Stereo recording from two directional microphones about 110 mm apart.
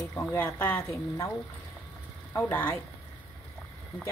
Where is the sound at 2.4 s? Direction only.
15° left (ahead or behind).